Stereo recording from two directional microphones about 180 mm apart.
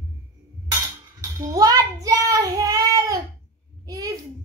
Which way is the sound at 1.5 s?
20° right (ahead or behind).